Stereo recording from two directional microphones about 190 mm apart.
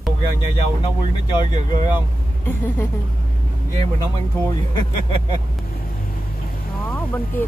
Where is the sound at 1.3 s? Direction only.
20° left (ahead or behind).